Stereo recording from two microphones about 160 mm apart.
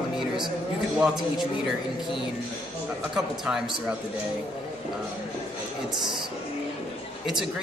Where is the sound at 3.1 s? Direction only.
5° right (ahead or behind).